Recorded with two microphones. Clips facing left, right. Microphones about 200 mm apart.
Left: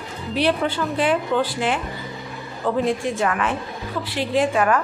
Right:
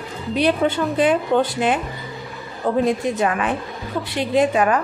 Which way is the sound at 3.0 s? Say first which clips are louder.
Right 2 dB; 20° right (ahead or behind).